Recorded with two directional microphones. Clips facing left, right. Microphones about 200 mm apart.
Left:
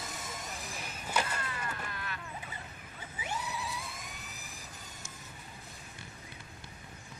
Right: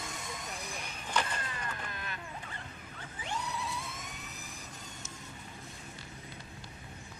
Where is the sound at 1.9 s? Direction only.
20° right (ahead or behind).